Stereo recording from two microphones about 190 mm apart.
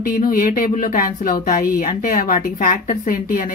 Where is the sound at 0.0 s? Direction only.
50° left (ahead or behind).